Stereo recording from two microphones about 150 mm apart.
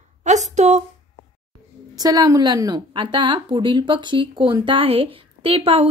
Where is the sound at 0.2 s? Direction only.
50° right (ahead or behind).